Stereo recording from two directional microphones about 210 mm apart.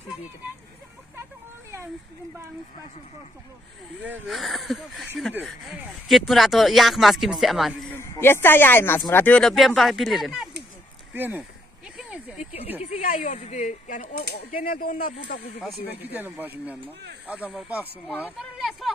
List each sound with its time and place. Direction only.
4.0 s speech: 5° right (ahead or behind)
7.9 s speech: 10° left (ahead or behind); by 11.4 s 10° right (ahead or behind)
12.0 s a sound: 5° right (ahead or behind)
12.4 s speech: 30° left (ahead or behind); by 15.4 s 45° left (ahead or behind)
15.9 s speech: 10° right (ahead or behind)
18.0 s speech: 5° left (ahead or behind)